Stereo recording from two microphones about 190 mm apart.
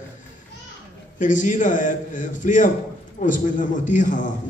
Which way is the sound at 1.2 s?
40° left (ahead or behind).